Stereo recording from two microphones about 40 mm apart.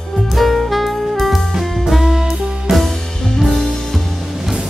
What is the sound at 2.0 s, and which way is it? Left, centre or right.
Music, centre.